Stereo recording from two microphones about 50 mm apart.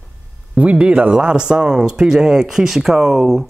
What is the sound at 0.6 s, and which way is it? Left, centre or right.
Speech, right.